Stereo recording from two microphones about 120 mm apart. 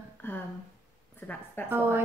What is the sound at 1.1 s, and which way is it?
Speech, 15° left (ahead or behind).